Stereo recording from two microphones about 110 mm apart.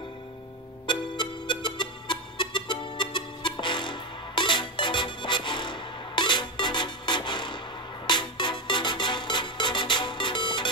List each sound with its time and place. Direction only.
0.8 s music: 45° left (ahead or behind)